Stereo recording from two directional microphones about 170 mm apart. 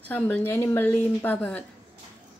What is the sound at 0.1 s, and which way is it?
A woman's voice, 10° left (ahead or behind).